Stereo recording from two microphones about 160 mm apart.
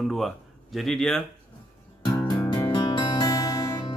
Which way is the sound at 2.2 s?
25° left (ahead or behind).